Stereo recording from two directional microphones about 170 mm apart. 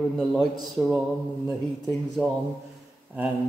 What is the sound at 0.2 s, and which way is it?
Speech, centre (ahead or behind).